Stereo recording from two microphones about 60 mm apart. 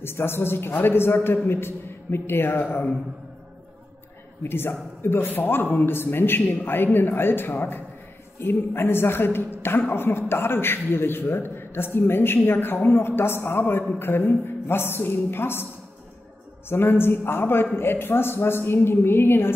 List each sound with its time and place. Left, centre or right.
0.0 s a man's voice: left
4.4 s a man's voice: left
16.6 s a man's voice: left